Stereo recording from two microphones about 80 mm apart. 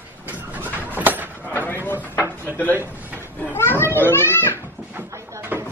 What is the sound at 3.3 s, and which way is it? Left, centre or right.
A child's voice, left.